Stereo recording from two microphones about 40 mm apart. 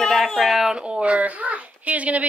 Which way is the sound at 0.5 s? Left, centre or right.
Centre.